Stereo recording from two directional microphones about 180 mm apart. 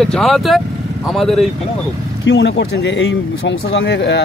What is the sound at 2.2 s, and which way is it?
Speech, 75° left (ahead or behind).